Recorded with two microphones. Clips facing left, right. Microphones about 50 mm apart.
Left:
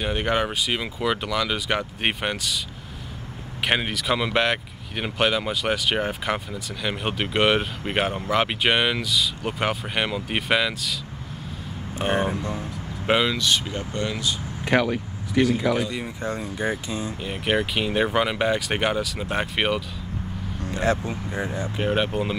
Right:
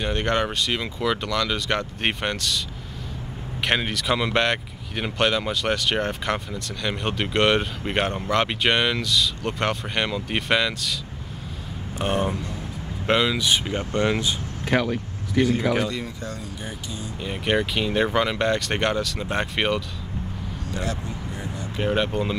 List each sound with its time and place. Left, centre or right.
0.0 s speech: centre
3.6 s speech: centre
12.0 s speech: centre
13.4 s speech: centre
13.7 s speech: right
14.6 s vehicle: centre
15.9 s speech: left
17.2 s speech: centre
20.7 s speech: left
21.7 s speech: centre